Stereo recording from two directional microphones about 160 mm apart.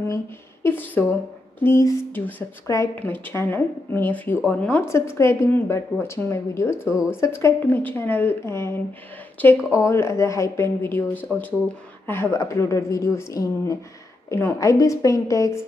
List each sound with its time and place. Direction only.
0.7 s a woman's voice: 10° left (ahead or behind)